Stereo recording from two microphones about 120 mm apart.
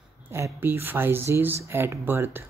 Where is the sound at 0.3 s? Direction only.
20° right (ahead or behind).